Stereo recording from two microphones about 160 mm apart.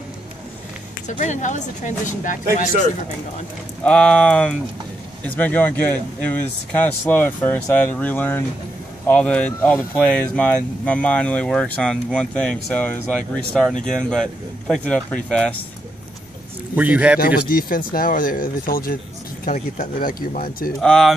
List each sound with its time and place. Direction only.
1.0 s speech: 50° left (ahead or behind)
3.8 s speech: 5° left (ahead or behind)
16.7 s a man's voice: 10° right (ahead or behind)
17.2 s speech: 70° left (ahead or behind)
20.8 s speech: 5° left (ahead or behind)